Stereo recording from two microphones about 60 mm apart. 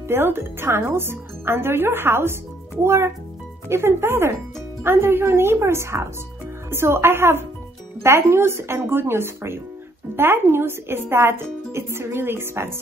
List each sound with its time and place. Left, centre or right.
0.1 s speech: right